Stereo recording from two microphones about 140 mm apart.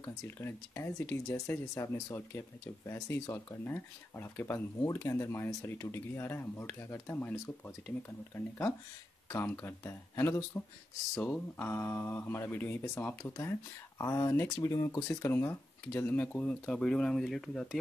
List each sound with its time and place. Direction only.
0.0 s speech: 20° left (ahead or behind)
9.3 s speech: 15° left (ahead or behind)